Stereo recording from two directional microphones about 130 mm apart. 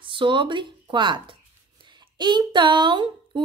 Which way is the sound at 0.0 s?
40° right (ahead or behind).